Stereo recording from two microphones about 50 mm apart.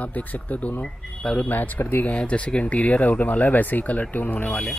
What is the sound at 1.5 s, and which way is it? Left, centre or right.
Speech, left.